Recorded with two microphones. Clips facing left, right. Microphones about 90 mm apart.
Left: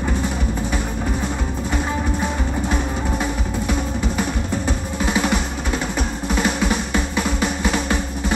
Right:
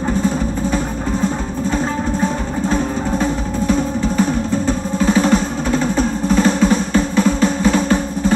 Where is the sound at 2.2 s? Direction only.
15° left (ahead or behind).